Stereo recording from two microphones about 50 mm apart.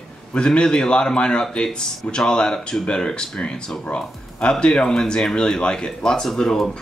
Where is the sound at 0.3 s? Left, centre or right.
Centre.